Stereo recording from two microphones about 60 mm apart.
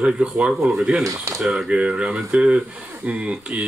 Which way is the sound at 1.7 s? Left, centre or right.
Centre.